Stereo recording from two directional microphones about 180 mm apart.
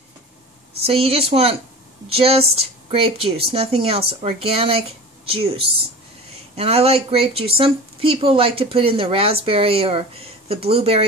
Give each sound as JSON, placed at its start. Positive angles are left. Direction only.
{"t": 0.8, "sound": "speech", "side_deg": -35}